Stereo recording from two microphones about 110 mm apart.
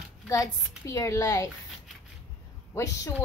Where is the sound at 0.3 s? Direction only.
30° left (ahead or behind).